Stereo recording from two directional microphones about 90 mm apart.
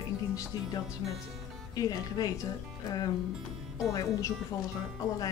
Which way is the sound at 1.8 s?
45° left (ahead or behind).